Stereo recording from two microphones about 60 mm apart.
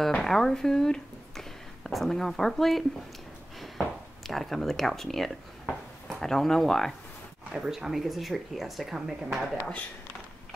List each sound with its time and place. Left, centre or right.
0.2 s speech: centre
3.5 s a sound: centre
4.3 s speech: centre
7.5 s speech: centre